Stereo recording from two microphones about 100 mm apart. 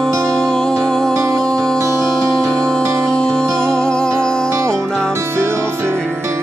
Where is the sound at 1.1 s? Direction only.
30° right (ahead or behind).